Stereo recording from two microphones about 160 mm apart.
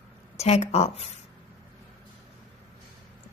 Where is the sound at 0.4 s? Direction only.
40° left (ahead or behind).